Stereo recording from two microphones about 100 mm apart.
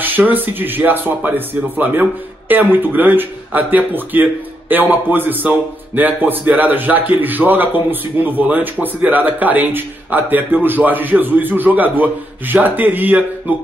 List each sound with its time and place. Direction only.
0.0 s speech: 15° right (ahead or behind)